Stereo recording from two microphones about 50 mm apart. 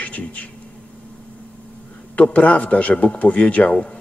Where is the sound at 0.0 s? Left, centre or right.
Left.